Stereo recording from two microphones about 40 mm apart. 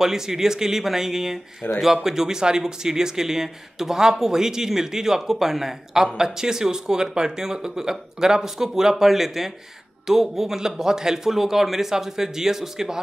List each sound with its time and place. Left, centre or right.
0.0 s speech: centre
1.6 s speech: left
2.0 s speech: centre